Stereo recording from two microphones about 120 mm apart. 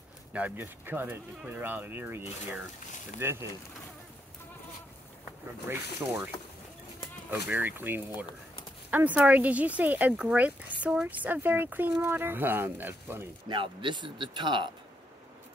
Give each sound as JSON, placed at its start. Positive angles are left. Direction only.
{"t": 0.3, "sound": "speech", "side_deg": -15}
{"t": 5.7, "sound": "speech", "side_deg": -15}
{"t": 13.5, "sound": "speech", "side_deg": -45}